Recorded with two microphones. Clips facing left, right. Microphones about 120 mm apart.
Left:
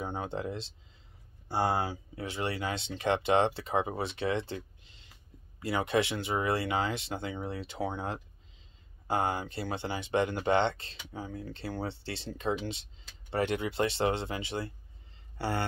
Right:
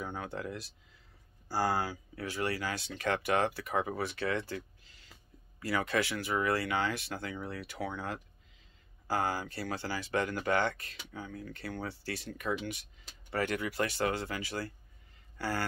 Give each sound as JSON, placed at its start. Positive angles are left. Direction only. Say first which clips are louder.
{"t": 0.0, "sound": "speech", "louder": "left 3 dB", "side_deg": 25}